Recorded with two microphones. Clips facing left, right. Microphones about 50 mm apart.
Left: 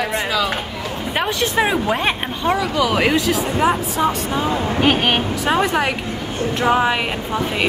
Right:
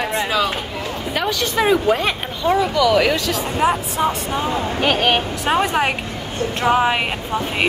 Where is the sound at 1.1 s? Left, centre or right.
Left.